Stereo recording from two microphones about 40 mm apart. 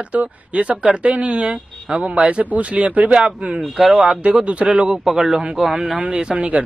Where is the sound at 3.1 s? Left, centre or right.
Right.